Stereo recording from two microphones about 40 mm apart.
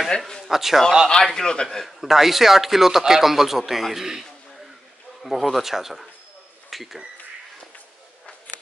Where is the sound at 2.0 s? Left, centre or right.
Centre.